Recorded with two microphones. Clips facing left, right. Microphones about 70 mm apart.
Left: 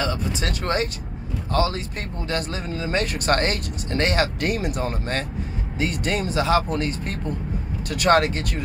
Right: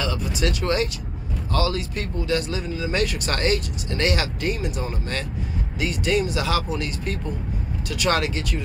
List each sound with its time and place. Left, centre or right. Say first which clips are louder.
0.0 s speech: even; left
4.4 s speech: left 2 dB; left